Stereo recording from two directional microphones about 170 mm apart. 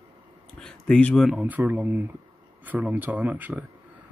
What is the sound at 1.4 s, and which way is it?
Speech, 10° right (ahead or behind).